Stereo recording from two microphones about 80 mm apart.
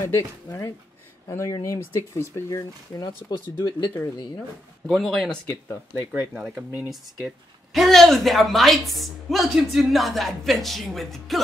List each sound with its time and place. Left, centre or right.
0.0 s speech: left
3.0 s speech: left
4.8 s a woman's voice: centre